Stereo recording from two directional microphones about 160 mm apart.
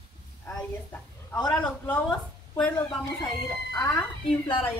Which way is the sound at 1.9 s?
10° left (ahead or behind).